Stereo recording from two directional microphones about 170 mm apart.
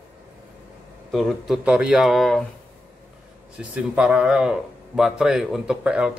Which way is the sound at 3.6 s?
5° right (ahead or behind).